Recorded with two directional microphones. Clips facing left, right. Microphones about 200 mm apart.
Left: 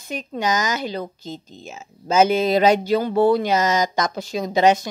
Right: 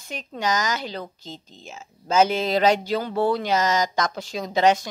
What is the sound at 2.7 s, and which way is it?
Speech, 20° left (ahead or behind).